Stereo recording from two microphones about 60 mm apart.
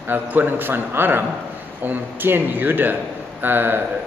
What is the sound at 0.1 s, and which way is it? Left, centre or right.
A man's voice, right.